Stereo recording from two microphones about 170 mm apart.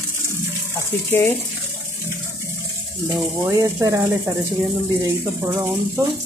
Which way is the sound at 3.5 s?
15° right (ahead or behind).